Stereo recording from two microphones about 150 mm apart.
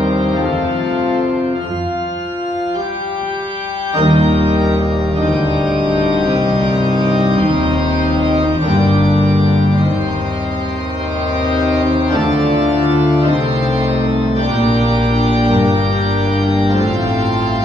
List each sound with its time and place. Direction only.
3.9 s organ: 40° right (ahead or behind)
5.4 s organ: 5° right (ahead or behind)
5.9 s organ: 40° right (ahead or behind)
15.2 s organ: 40° right (ahead or behind)